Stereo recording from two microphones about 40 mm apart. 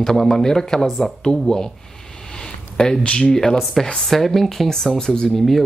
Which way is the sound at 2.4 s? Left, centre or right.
Centre.